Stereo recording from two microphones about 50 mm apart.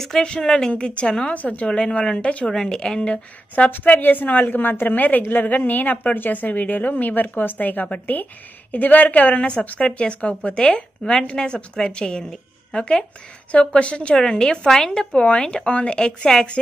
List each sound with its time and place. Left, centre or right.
0.2 s a woman's voice: centre
1.3 s a woman's voice: left
2.5 s a woman's voice: centre
3.6 s a woman's voice: left